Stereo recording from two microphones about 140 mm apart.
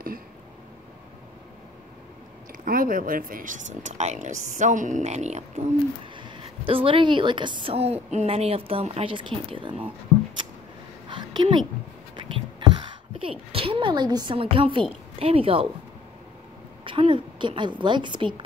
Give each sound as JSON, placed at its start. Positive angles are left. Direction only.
{"t": 2.6, "sound": "speech", "side_deg": -90}
{"t": 6.1, "sound": "a woman's voice", "side_deg": -35}
{"t": 11.1, "sound": "a sound", "side_deg": -35}
{"t": 12.2, "sound": "speech", "side_deg": -35}
{"t": 16.8, "sound": "a woman's voice", "side_deg": -40}